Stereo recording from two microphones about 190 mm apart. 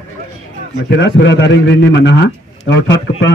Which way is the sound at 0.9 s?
70° left (ahead or behind).